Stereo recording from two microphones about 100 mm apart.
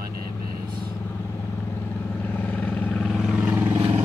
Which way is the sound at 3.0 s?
Centre (ahead or behind).